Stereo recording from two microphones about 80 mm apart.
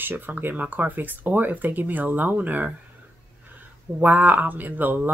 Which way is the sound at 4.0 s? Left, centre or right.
Right.